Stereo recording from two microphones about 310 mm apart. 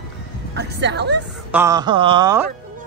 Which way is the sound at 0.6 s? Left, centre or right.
Right.